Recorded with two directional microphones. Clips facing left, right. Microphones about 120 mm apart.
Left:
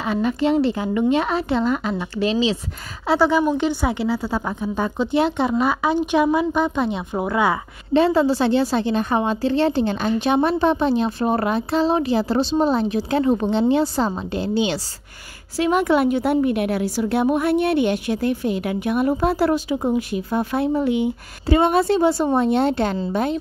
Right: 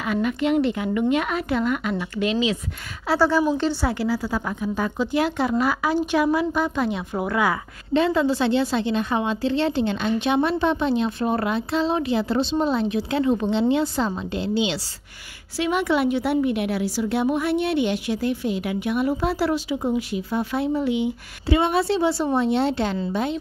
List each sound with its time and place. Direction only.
0.0 s speech: 30° left (ahead or behind)
3.1 s a woman's voice: 15° left (ahead or behind); by 22.9 s 50° left (ahead or behind)